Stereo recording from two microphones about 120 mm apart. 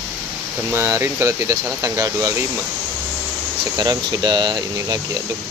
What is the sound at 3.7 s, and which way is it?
Speech, 35° right (ahead or behind).